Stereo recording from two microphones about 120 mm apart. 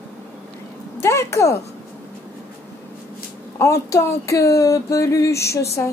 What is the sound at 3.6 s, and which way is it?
Female singing, 25° left (ahead or behind).